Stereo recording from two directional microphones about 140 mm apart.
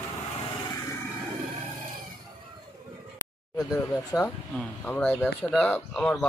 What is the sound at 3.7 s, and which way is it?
Speech, 25° left (ahead or behind).